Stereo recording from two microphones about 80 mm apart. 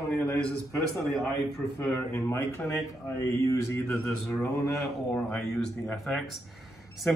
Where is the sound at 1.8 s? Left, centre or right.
Left.